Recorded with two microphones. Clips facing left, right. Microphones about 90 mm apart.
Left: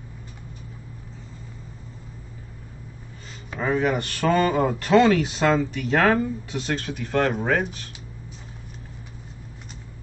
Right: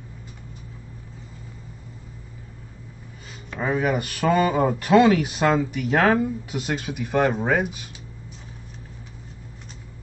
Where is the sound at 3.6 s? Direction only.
5° right (ahead or behind).